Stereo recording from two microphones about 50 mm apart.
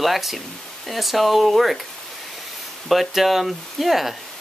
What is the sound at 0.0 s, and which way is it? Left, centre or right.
Speech, centre.